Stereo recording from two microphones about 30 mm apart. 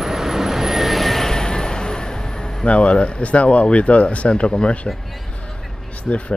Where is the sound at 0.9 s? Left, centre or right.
Centre.